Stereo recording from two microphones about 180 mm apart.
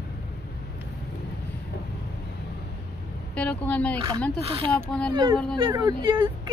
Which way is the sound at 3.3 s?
10° left (ahead or behind).